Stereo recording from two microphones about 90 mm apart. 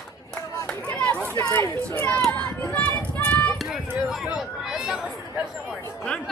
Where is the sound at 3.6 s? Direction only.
Centre (ahead or behind).